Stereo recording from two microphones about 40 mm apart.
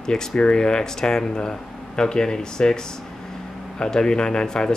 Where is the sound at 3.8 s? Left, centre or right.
Centre.